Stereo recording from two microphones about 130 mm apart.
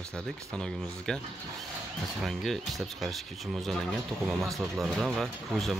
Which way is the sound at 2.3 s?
Centre (ahead or behind).